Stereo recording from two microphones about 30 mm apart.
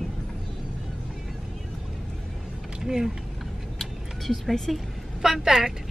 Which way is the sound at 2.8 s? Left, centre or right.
Centre.